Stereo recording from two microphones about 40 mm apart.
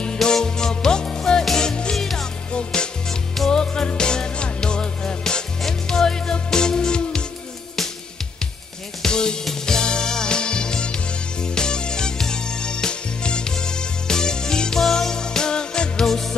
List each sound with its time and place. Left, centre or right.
0.0 s music: centre
2.0 s music: centre
2.5 s music: left
9.0 s music: centre